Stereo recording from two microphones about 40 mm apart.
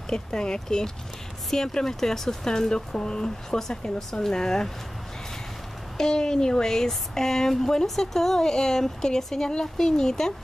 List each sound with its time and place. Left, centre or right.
0.1 s speech: centre
5.9 s speech: centre